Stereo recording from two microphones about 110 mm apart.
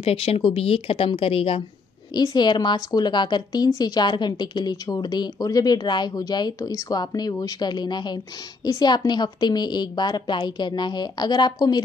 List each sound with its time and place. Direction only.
0.0 s a woman's voice: 55° left (ahead or behind)
2.1 s speech: 40° left (ahead or behind)